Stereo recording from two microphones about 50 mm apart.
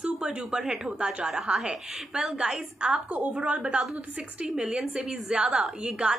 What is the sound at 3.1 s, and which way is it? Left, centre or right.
A woman's voice, right.